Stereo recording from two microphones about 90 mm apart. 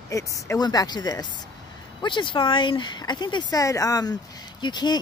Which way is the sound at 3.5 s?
40° left (ahead or behind).